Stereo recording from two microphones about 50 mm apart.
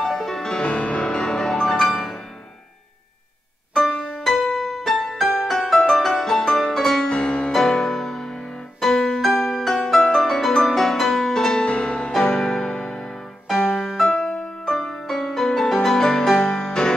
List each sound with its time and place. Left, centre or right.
0.0 s music: centre
0.7 s music: left; by 2.0 s centre
4.2 s music: centre
7.1 s music: left
7.5 s music: centre
11.6 s music: left
12.1 s music: centre
14.1 s music: left
14.6 s music: centre